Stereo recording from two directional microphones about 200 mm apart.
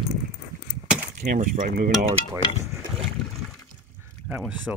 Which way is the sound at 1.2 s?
40° right (ahead or behind).